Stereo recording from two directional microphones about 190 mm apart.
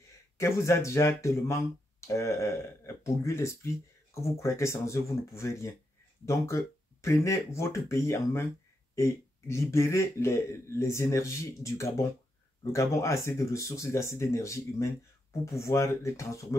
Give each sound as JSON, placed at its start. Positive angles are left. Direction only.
{"t": 0.4, "sound": "a man's voice", "side_deg": 15}